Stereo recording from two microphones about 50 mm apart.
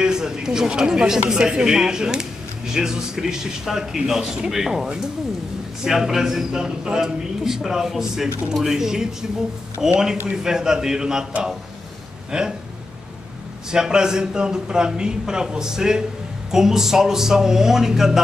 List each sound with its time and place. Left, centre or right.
0.0 s a woman's voice: centre
5.9 s a woman's voice: centre
12.3 s a woman's voice: centre
13.7 s a woman's voice: centre